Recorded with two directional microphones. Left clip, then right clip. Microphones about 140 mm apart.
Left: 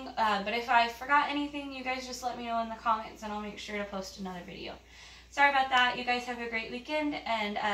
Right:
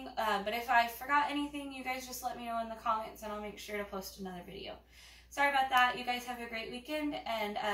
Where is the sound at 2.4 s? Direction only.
10° right (ahead or behind).